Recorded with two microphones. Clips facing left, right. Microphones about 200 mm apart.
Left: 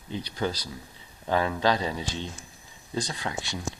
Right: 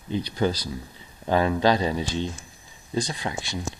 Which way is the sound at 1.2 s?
20° right (ahead or behind).